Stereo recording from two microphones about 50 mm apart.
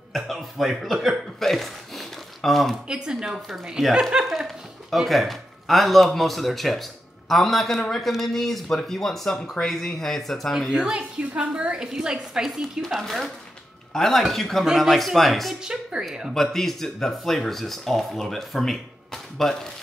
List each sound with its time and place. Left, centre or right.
0.1 s speech: centre
2.9 s a woman's voice: centre
10.7 s a woman's voice: centre
12.8 s speech: centre
15.6 s a woman's voice: centre
16.3 s speech: centre